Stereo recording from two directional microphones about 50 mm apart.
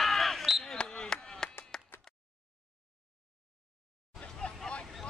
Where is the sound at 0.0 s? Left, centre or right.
Centre.